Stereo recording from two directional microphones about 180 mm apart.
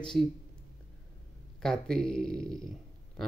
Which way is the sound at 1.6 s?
5° left (ahead or behind).